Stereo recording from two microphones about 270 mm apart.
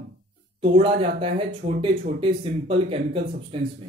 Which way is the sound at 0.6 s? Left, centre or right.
Centre.